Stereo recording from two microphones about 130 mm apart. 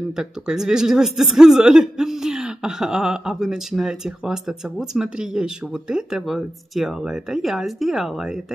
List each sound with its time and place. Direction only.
0.1 s speech: 5° right (ahead or behind)